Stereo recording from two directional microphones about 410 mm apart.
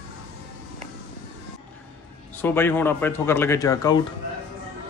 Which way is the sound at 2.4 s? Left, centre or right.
Centre.